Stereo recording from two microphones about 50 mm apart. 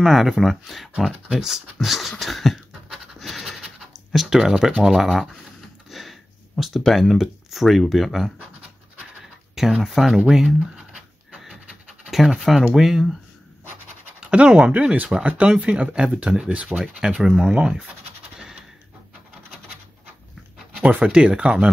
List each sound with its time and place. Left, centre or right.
0.0 s speech: centre
1.4 s scratch: centre
4.1 s speech: centre
5.9 s a sound: centre
7.2 s speech: centre
8.4 s dog: right
9.6 s speech: centre
12.4 s speech: centre
14.2 s speech: right
20.8 s speech: right